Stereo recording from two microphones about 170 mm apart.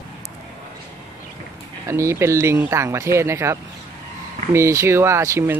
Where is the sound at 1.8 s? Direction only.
15° right (ahead or behind).